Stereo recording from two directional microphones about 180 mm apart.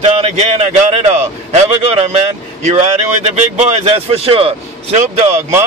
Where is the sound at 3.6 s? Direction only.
35° right (ahead or behind).